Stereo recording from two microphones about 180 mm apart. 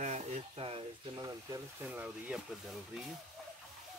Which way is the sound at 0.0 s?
40° right (ahead or behind).